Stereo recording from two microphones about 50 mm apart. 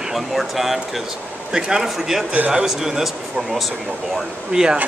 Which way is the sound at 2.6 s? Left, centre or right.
Centre.